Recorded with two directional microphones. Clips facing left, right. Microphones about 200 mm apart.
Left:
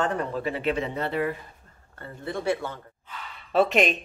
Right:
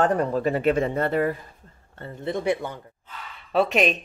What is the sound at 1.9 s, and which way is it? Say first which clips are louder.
Speech: right 4 dB; 25° right (ahead or behind).